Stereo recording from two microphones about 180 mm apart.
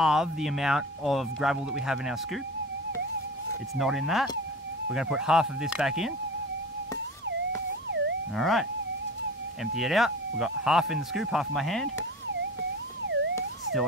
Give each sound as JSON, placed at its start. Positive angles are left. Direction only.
{"t": 0.0, "sound": "speech", "side_deg": 0}
{"t": 3.7, "sound": "speech", "side_deg": 0}
{"t": 8.4, "sound": "speech", "side_deg": 0}
{"t": 9.8, "sound": "speech", "side_deg": 0}
{"t": 13.0, "sound": "emergency vehicle", "side_deg": -85}